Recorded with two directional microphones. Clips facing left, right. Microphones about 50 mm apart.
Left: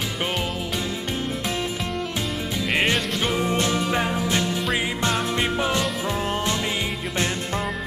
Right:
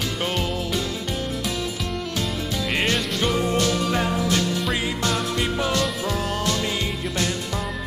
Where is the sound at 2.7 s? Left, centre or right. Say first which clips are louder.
Left 2 dB; centre.